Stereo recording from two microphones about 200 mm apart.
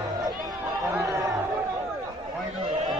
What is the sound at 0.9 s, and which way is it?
Chatter, 15° right (ahead or behind).